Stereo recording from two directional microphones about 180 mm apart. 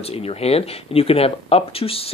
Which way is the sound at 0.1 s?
35° left (ahead or behind).